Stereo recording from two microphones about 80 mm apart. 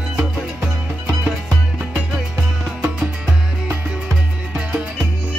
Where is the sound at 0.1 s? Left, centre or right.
Centre.